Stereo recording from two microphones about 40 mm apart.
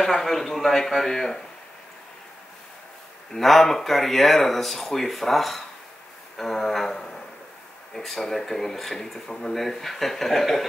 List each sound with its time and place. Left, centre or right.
0.0 s speech: centre
3.3 s speech: centre